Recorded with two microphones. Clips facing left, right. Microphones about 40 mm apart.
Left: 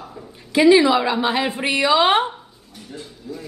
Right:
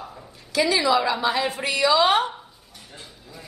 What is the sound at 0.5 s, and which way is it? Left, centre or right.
A woman's voice, left.